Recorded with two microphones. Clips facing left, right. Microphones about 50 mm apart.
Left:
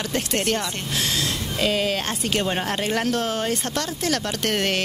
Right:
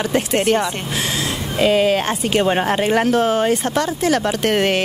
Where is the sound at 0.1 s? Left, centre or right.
Centre.